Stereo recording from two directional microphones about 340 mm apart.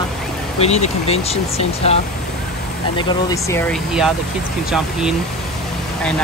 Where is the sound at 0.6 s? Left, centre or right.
Centre.